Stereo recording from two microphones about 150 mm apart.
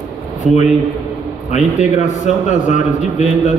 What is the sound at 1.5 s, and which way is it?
A man's voice, 55° left (ahead or behind).